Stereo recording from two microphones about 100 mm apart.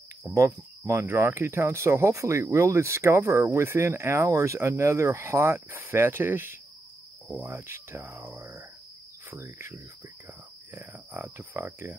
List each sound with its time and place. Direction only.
0.3 s speech: 25° right (ahead or behind)